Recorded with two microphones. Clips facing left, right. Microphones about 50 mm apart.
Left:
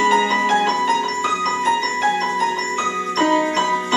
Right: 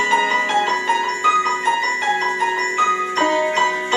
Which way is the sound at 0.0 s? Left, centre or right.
Right.